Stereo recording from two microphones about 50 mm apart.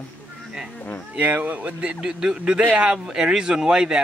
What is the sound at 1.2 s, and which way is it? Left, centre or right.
Speech, right.